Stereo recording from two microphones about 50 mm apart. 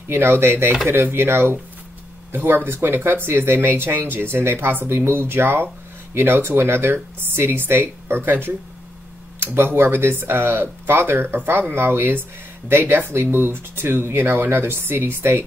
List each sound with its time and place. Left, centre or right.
0.1 s speech: right
9.4 s speech: right